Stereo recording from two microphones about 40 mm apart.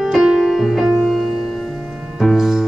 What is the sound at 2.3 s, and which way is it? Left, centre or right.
Music, centre.